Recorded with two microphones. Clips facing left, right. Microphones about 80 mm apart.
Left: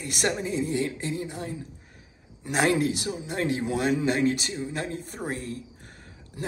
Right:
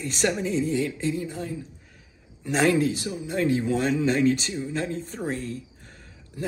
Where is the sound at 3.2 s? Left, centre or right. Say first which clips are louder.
Right 3 dB; left.